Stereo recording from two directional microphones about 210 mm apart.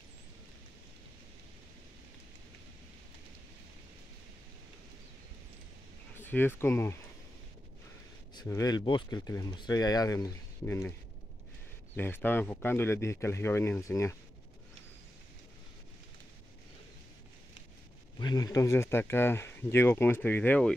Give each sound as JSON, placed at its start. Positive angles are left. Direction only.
{"t": 6.2, "sound": "speech", "side_deg": 10}
{"t": 8.4, "sound": "speech", "side_deg": 15}
{"t": 11.9, "sound": "speech", "side_deg": 10}
{"t": 18.2, "sound": "speech", "side_deg": 20}